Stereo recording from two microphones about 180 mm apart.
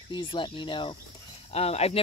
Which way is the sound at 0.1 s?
25° left (ahead or behind).